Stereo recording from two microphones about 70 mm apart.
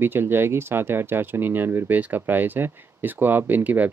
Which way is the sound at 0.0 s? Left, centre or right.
Right.